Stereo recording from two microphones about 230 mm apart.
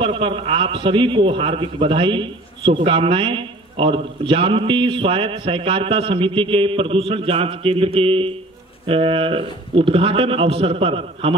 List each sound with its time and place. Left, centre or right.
0.0 s a man's voice: right